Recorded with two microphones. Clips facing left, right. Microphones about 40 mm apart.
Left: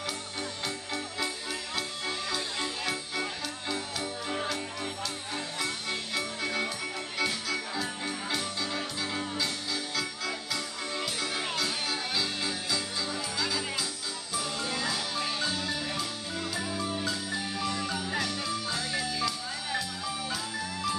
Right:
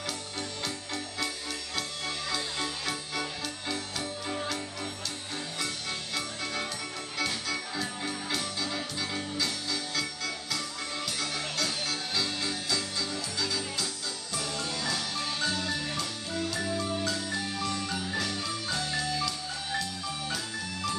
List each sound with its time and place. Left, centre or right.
0.0 s music: centre
4.6 s music: centre